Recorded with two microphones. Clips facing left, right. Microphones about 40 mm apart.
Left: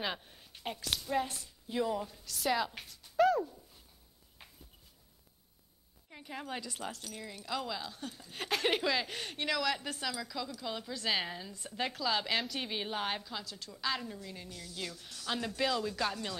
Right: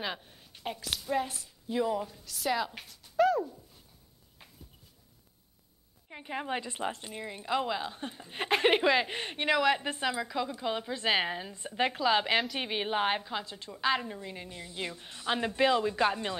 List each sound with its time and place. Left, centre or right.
0.0 s speech: centre
6.0 s a woman's voice: right